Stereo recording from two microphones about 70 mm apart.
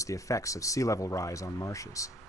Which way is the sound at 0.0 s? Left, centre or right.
Left.